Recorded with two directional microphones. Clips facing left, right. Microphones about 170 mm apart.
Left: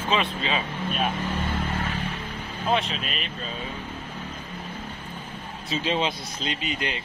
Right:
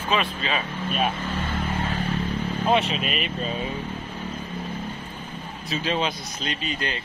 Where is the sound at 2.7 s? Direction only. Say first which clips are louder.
Right 2 dB; 5° right (ahead or behind).